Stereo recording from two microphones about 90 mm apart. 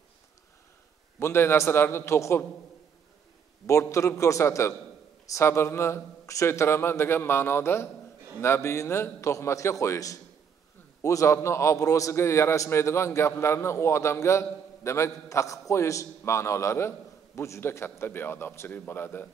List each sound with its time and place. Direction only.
1.2 s a man's voice: 25° left (ahead or behind)
3.6 s a man's voice: 35° left (ahead or behind)